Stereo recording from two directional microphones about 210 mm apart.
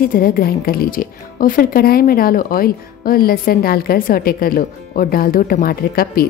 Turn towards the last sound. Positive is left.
turn(degrees=45)  # may be behind; listen again after turning